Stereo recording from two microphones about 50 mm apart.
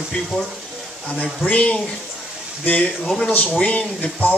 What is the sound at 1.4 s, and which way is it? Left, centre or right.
Speech, left.